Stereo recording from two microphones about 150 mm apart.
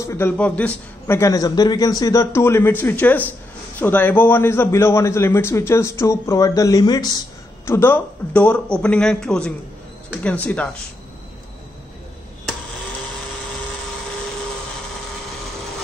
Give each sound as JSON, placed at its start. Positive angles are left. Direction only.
{"t": 0.0, "sound": "a man's voice", "side_deg": 20}
{"t": 0.4, "sound": "a man's voice", "side_deg": 10}
{"t": 7.6, "sound": "a man's voice", "side_deg": 15}